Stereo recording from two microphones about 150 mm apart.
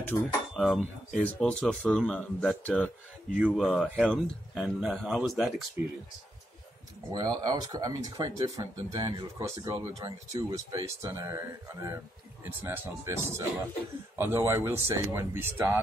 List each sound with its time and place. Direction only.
0.1 s speech: 20° left (ahead or behind)
0.6 s speech: centre (ahead or behind)
3.3 s speech: 10° right (ahead or behind)
3.6 s speech: 10° left (ahead or behind)
7.1 s speech: 25° right (ahead or behind)